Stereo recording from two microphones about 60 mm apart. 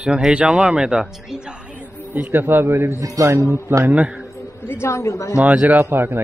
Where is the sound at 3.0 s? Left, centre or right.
Right.